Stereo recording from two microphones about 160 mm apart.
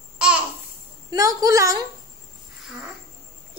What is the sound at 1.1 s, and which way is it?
Speech, 20° right (ahead or behind).